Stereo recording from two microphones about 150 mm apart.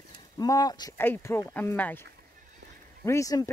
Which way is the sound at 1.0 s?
15° left (ahead or behind).